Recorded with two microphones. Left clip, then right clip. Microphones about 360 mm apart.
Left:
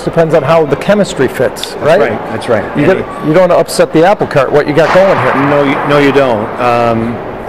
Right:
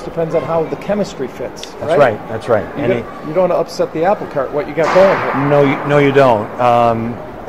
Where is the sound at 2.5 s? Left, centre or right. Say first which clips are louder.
Left 2 dB; right.